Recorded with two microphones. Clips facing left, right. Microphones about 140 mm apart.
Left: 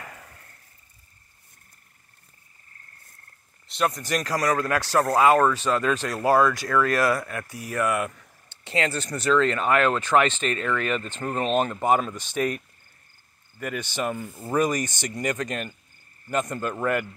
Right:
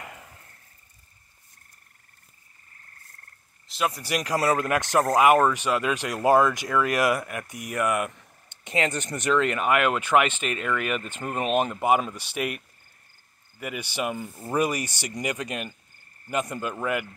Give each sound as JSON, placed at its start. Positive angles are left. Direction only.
{"t": 0.0, "sound": "a sound", "side_deg": -20}
{"t": 3.6, "sound": "speech", "side_deg": -5}
{"t": 13.6, "sound": "speech", "side_deg": -10}